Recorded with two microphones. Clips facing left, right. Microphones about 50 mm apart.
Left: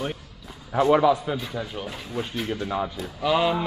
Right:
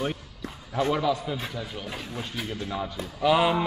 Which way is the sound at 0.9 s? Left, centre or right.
Left.